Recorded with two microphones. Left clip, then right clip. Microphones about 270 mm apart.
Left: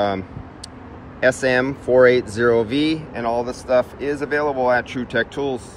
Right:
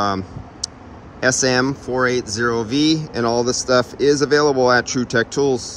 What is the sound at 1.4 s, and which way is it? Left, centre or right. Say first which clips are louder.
Speech: right 1 dB; centre.